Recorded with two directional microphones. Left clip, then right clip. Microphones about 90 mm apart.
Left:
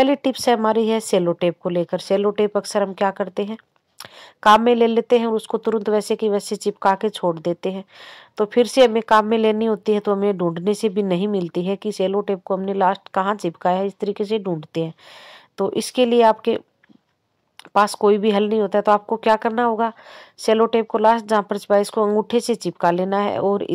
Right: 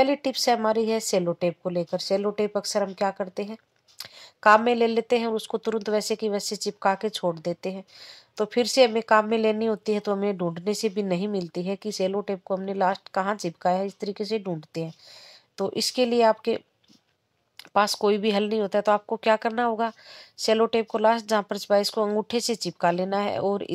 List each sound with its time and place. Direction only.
0.0 s speech: 40° left (ahead or behind)
2.2 s speech: 40° left (ahead or behind)
4.6 s speech: 40° left (ahead or behind)
6.9 s speech: 35° left (ahead or behind)
8.4 s speech: 35° left (ahead or behind)
14.1 s speech: 35° left (ahead or behind)
17.7 s speech: 35° left (ahead or behind)